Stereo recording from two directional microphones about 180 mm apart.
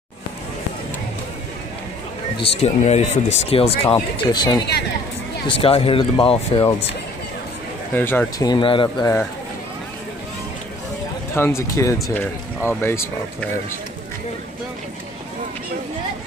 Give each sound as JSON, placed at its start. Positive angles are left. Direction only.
{"t": 2.4, "sound": "speech", "side_deg": 35}
{"t": 4.3, "sound": "speech", "side_deg": 25}
{"t": 7.9, "sound": "speech", "side_deg": 10}
{"t": 8.5, "sound": "speech", "side_deg": 25}
{"t": 11.3, "sound": "speech", "side_deg": 15}